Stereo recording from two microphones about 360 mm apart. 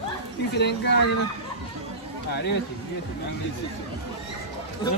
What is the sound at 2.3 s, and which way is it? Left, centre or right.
Speech, left.